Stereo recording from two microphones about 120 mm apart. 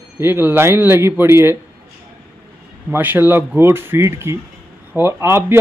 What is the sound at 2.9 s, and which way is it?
A man's voice, 15° right (ahead or behind).